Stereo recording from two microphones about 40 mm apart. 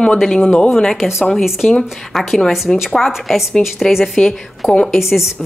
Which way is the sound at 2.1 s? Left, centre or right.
Centre.